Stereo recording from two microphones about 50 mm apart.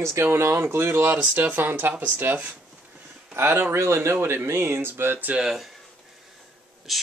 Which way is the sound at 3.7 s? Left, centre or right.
Right.